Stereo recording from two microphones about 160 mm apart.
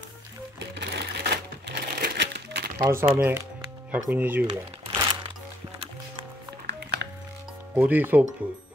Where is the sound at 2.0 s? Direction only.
90° right.